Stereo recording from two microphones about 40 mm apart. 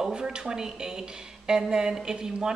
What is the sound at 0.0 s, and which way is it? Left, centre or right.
Speech, centre.